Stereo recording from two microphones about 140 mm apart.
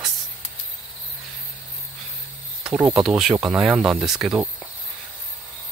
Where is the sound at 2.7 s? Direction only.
20° right (ahead or behind).